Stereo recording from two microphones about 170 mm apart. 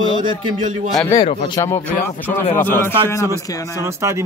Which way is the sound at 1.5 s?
15° left (ahead or behind).